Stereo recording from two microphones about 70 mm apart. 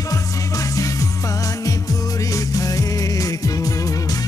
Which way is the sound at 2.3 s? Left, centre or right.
Left.